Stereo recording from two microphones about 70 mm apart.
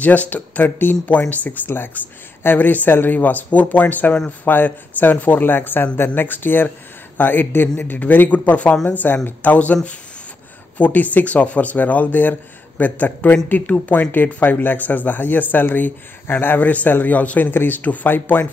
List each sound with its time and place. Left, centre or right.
0.0 s speech: left
10.8 s speech: left